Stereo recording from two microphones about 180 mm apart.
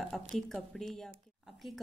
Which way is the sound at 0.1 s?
Centre (ahead or behind).